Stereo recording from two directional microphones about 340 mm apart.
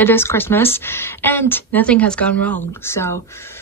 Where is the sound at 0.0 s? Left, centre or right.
Centre.